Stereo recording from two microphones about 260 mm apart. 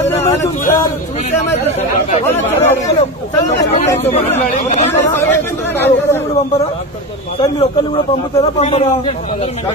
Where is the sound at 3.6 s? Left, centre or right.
Left.